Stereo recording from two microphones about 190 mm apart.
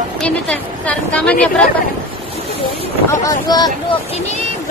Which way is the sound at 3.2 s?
20° left (ahead or behind).